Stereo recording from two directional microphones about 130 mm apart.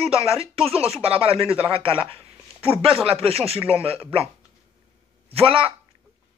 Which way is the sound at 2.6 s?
50° right (ahead or behind).